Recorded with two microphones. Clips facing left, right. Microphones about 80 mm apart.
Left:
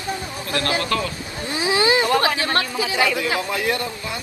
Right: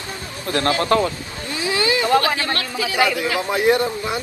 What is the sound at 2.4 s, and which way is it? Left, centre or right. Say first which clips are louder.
Speech: left 2 dB; left.